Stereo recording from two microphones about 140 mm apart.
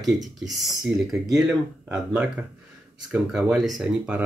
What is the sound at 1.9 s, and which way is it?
Speech, 10° right (ahead or behind).